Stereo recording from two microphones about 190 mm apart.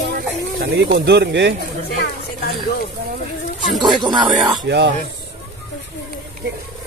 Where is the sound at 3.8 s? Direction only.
25° right (ahead or behind).